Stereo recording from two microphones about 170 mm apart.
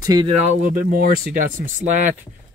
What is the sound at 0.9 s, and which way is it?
Speech, 55° right (ahead or behind).